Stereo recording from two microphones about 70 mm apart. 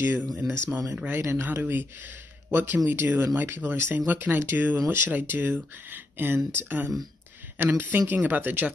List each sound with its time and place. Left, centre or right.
0.0 s speech: right